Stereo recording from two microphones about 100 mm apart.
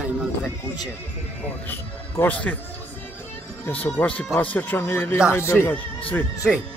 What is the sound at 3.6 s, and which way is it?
A man's voice, 15° left (ahead or behind).